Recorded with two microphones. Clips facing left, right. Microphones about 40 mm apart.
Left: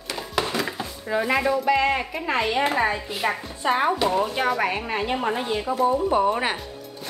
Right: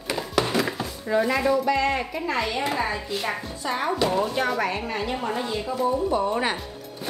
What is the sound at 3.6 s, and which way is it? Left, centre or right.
Speech, left.